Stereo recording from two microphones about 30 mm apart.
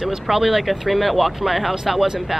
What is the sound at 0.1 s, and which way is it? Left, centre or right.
Speech, centre.